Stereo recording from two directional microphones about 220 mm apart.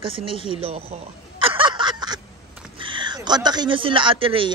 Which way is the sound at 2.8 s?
20° right (ahead or behind).